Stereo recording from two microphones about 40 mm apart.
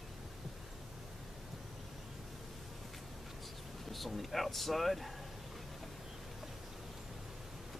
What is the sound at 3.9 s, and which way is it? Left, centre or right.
Speech, centre.